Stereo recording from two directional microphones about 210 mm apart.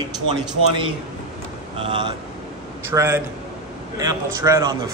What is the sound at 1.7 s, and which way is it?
Speech, 25° right (ahead or behind).